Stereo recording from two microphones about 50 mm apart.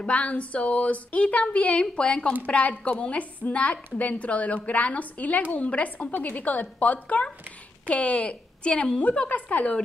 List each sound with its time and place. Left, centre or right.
0.0 s a woman's voice: left